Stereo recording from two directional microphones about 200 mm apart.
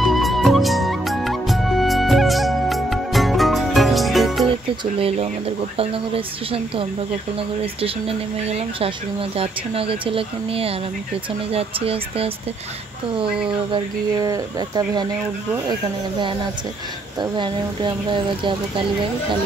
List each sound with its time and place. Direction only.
0.0 s music: centre (ahead or behind)
4.9 s speech: 30° right (ahead or behind)
8.5 s speech: 30° right (ahead or behind)
17.2 s speech: 25° right (ahead or behind)